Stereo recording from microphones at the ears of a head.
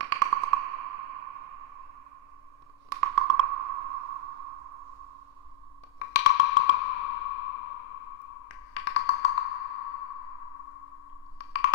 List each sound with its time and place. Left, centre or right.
0.0 s sonar: right
2.9 s sonar: right
5.9 s sonar: left